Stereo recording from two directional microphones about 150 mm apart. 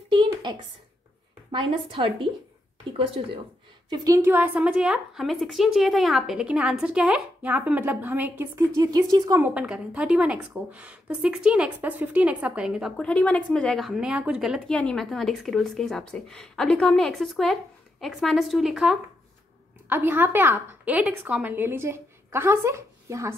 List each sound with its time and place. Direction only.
0.1 s a sound: 30° right (ahead or behind)
1.5 s a woman's voice: 35° right (ahead or behind)
3.9 s a woman's voice: 25° right (ahead or behind)
9.4 s a woman's voice: 10° right (ahead or behind)
12.9 s speech: 5° left (ahead or behind)
19.9 s a woman's voice: 15° right (ahead or behind)